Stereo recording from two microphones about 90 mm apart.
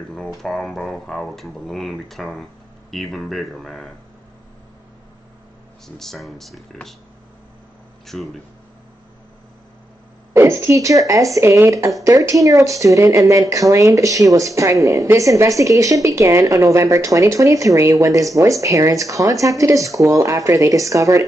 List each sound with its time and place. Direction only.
0.3 s speech: 5° left (ahead or behind)
5.9 s speech: centre (ahead or behind)
8.1 s speech: centre (ahead or behind)
10.3 s speech: 30° right (ahead or behind)